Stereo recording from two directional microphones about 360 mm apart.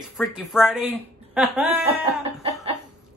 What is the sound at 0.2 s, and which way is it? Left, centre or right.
Speech, centre.